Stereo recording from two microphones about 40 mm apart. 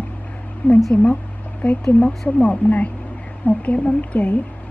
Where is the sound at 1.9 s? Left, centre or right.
Left.